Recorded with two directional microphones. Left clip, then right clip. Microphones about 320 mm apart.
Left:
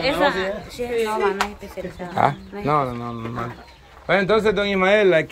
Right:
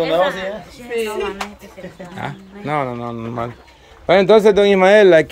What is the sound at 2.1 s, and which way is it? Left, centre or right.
Speech, centre.